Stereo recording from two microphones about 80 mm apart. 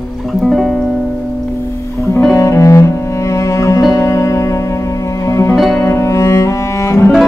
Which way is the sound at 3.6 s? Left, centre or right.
Left.